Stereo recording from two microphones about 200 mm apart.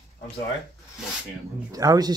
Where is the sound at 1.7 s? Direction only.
20° right (ahead or behind).